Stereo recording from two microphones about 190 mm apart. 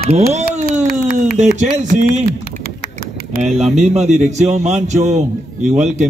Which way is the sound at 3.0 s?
50° left (ahead or behind).